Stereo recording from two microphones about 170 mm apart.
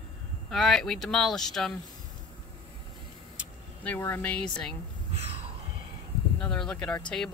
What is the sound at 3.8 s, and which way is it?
Speech, 10° left (ahead or behind).